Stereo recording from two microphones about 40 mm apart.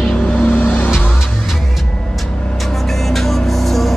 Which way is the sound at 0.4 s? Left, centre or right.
Left.